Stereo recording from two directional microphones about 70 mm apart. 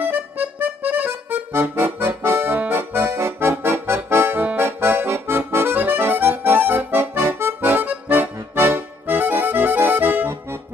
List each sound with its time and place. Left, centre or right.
0.0 s accordion: right
8.5 s music: right